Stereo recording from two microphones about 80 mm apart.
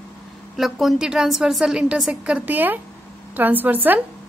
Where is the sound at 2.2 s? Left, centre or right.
Centre.